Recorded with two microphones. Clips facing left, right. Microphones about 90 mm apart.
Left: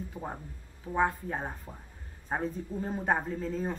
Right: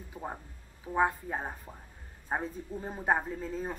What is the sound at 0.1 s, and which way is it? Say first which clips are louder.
Speech: left 1 dB; 5° right (ahead or behind).